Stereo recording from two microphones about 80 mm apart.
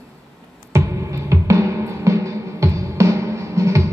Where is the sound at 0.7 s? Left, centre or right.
Right.